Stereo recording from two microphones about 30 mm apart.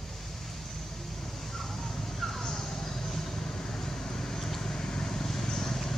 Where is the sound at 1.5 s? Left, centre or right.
Centre.